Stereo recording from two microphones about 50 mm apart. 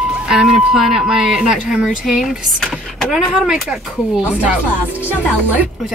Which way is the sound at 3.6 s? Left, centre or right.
Centre.